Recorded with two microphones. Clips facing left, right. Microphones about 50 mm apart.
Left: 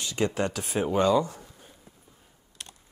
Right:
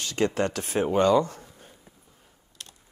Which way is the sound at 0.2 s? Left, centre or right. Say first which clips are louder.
Right 2 dB; right.